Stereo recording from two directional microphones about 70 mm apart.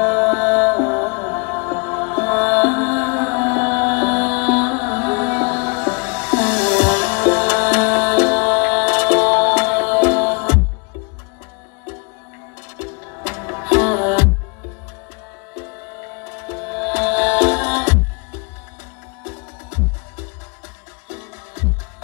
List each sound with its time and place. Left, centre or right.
0.0 s music: centre
12.7 s music: right
16.3 s music: right